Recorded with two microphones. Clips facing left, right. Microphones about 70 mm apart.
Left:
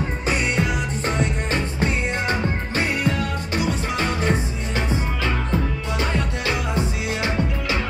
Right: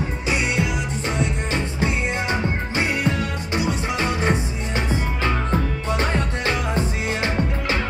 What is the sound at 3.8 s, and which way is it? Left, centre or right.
Music, right.